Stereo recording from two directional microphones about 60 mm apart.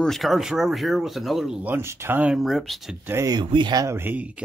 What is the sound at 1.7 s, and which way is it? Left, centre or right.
Speech, right.